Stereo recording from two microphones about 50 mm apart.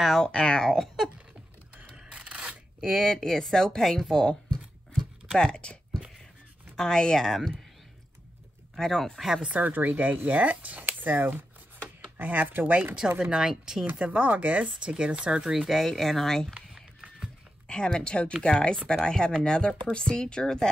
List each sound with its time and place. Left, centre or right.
0.0 s speech: centre
0.3 s speech: centre
0.7 s speech: centre
2.0 s a sound: right
2.9 s speech: centre
6.8 s speech: centre
8.7 s speech: centre
9.4 s speech: right
13.2 s speech: centre
13.8 s speech: right
15.5 s speech: centre
16.5 s a sound: right
17.6 s speech: centre